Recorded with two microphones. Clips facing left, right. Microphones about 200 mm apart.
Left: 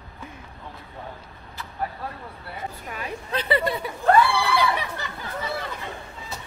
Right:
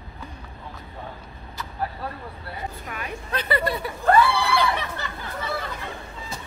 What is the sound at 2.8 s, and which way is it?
A woman's voice, 30° left (ahead or behind).